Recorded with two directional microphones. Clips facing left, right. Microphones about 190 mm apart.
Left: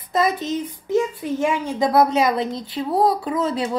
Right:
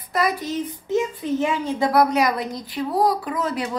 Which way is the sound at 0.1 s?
25° left (ahead or behind).